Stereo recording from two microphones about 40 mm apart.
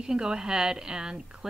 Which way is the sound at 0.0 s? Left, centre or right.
Centre.